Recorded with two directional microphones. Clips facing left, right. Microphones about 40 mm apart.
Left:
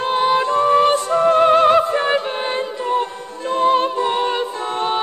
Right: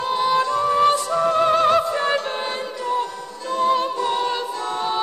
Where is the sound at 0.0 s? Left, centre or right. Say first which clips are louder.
Left 3 dB; left.